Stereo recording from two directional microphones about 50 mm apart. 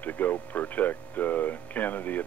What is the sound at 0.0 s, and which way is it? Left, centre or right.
Speech, left.